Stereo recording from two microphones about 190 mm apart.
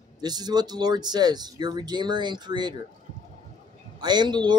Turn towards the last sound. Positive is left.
turn(degrees=-25)  # may be behind; listen again after turning